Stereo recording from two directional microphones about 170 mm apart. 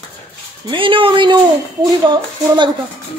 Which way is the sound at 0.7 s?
30° right (ahead or behind).